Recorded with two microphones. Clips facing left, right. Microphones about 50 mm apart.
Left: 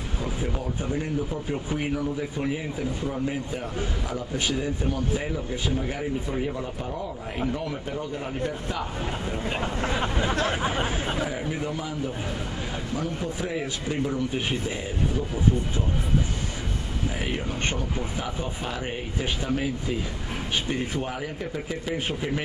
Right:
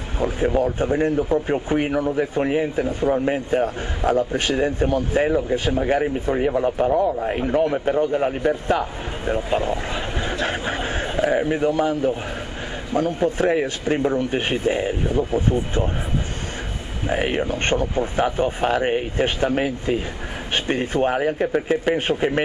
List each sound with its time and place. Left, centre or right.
0.6 s a man's voice: right
10.4 s a man's voice: right
17.1 s a man's voice: right